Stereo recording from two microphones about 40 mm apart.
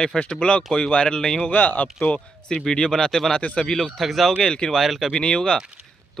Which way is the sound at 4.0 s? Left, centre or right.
Centre.